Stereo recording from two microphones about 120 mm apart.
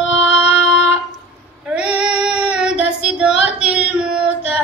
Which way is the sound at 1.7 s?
10° right (ahead or behind).